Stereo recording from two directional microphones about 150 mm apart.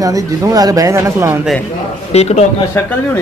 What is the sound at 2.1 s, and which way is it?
Speech, 45° left (ahead or behind).